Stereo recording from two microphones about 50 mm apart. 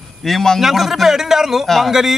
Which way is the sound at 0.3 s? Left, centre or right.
Centre.